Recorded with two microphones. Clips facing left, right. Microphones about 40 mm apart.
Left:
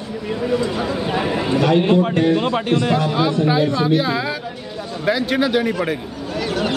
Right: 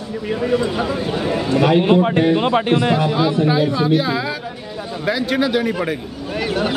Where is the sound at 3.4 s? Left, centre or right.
Centre.